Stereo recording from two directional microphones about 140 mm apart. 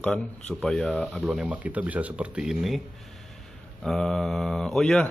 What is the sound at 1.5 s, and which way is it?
Speech, 10° right (ahead or behind).